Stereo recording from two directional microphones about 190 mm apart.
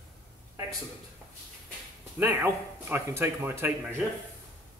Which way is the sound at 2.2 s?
10° right (ahead or behind).